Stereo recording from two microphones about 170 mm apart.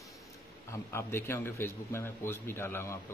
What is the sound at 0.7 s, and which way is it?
Speech, 15° left (ahead or behind).